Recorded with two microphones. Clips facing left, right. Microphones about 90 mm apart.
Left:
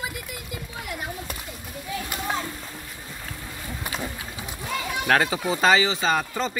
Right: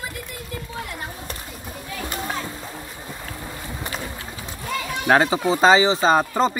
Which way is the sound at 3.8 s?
5° left (ahead or behind).